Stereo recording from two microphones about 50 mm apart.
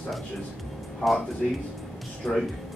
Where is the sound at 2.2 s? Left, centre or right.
Centre.